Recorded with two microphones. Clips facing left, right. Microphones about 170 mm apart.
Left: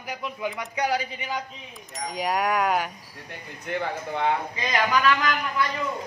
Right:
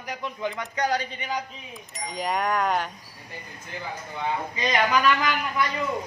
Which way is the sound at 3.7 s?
70° left (ahead or behind).